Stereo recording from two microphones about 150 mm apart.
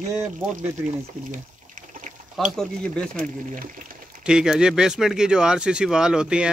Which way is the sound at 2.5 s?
5° left (ahead or behind).